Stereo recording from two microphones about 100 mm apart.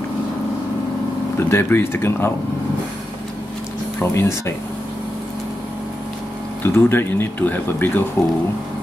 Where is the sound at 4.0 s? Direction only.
25° left (ahead or behind).